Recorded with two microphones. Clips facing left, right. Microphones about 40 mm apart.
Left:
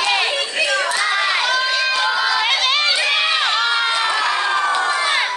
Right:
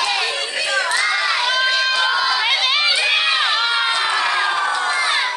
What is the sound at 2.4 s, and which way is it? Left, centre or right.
Crowd, centre.